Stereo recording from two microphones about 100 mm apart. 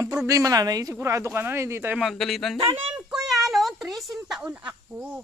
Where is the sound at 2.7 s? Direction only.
15° right (ahead or behind).